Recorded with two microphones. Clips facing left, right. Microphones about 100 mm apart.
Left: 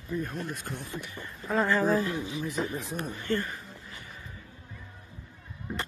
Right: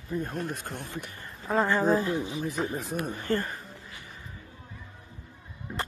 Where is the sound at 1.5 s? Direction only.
30° right (ahead or behind).